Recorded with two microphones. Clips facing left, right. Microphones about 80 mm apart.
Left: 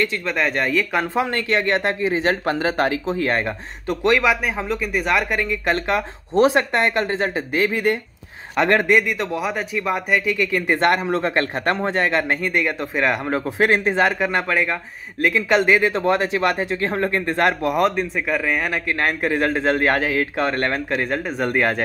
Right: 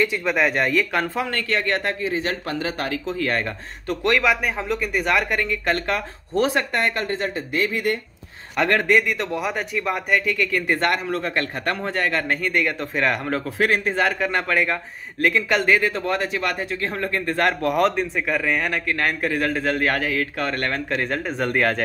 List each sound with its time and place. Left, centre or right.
0.0 s speech: centre
1.0 s speech: centre
3.8 s speech: centre
5.9 s speech: left
7.1 s speech: left
8.5 s speech: centre
13.6 s speech: left
14.2 s speech: centre
19.2 s speech: left
20.9 s speech: centre